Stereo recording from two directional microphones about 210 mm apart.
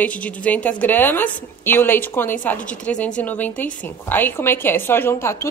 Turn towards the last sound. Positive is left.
turn(degrees=10)  # may be behind; listen again after turning